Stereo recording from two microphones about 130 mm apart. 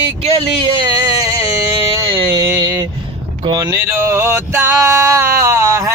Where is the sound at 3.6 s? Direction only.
20° right (ahead or behind).